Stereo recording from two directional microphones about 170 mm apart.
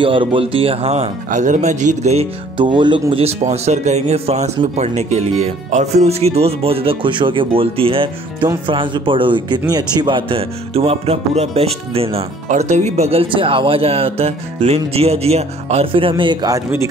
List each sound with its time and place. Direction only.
0.0 s speech: 30° right (ahead or behind)